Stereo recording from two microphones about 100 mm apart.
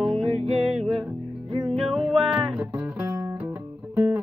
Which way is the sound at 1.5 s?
55° right (ahead or behind).